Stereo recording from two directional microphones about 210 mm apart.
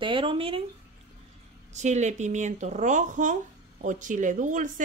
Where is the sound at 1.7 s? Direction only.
35° right (ahead or behind).